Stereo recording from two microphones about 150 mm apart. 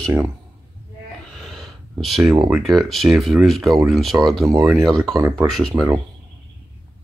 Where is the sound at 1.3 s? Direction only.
Centre (ahead or behind).